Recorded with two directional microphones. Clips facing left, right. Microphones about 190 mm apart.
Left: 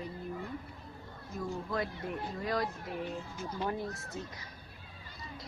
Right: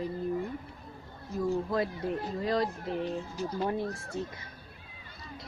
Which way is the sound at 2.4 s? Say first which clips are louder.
Right 4 dB; 30° right (ahead or behind).